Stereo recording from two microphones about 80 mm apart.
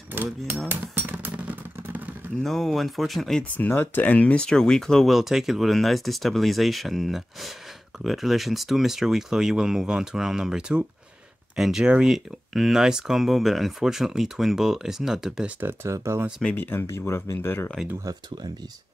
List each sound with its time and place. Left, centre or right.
0.1 s speech: right
1.2 s vehicle: right
2.4 s speech: centre
3.5 s speech: left; by 15.5 s centre
15.6 s speech: right
16.5 s speech: left
16.8 s speech: left
18.1 s speech: right